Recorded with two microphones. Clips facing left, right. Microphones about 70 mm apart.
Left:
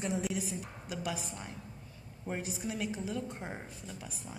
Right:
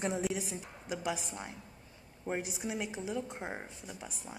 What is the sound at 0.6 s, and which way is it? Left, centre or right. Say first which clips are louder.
Speech: right 1 dB; right.